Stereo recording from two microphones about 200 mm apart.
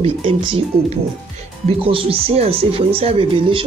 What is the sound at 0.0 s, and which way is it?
Speech, 30° right (ahead or behind).